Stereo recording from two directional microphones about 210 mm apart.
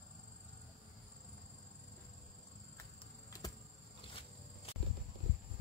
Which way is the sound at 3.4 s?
15° left (ahead or behind).